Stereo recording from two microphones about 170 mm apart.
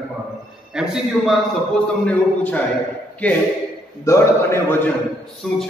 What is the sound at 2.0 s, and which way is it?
A man's voice, 10° left (ahead or behind).